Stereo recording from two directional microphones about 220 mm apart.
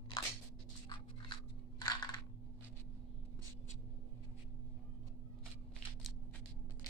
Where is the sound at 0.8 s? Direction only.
20° left (ahead or behind).